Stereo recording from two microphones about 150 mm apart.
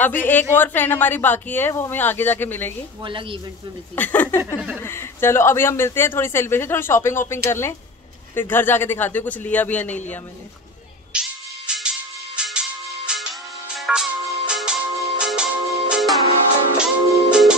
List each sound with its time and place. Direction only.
0.0 s speech: 10° left (ahead or behind)
3.0 s speech: 35° right (ahead or behind)
3.9 s speech: 10° left (ahead or behind)
11.1 s music: 5° right (ahead or behind)